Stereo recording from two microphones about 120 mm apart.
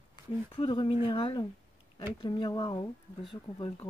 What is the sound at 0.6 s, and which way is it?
Speech, 45° left (ahead or behind).